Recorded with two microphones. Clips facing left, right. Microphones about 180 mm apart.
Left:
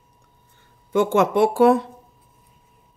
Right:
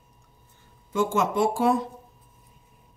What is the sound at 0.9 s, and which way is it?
Speech, 65° left (ahead or behind).